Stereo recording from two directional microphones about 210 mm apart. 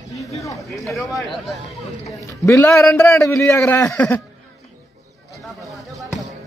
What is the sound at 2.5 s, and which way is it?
A man's voice, 10° left (ahead or behind).